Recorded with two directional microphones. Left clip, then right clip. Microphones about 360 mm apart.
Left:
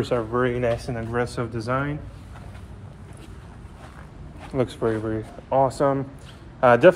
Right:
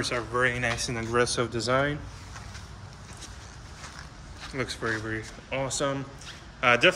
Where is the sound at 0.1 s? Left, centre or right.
Centre.